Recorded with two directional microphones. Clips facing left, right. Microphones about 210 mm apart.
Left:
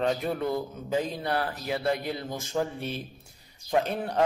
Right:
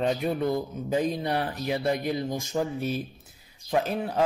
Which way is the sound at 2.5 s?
5° right (ahead or behind).